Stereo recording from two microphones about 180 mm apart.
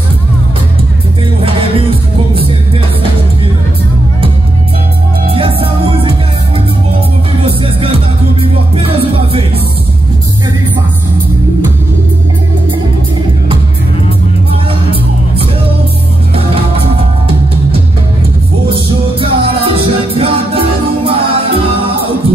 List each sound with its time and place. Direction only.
1.4 s music: 30° right (ahead or behind)
5.3 s music: 30° right (ahead or behind)
7.4 s music: 30° right (ahead or behind)
18.7 s music: 30° right (ahead or behind)